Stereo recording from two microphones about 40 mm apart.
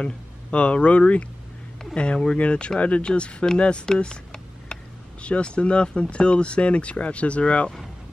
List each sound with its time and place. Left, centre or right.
0.0 s speech: left